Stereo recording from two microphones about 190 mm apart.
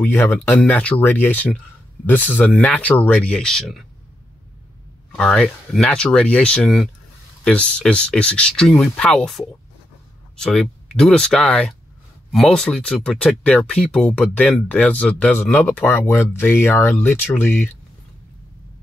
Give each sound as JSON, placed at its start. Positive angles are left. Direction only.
{"t": 0.0, "sound": "speech", "side_deg": 10}
{"t": 5.1, "sound": "speech", "side_deg": 5}